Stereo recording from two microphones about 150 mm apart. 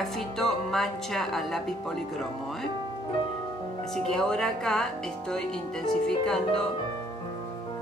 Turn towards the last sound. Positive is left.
turn(degrees=5)  # may be behind; listen again after turning